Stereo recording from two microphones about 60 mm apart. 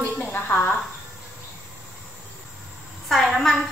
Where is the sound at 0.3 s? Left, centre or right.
Left.